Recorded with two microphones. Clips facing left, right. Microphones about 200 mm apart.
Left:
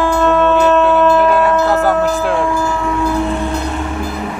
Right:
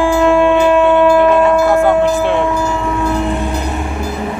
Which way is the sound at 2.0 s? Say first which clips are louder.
Right 2 dB; centre (ahead or behind).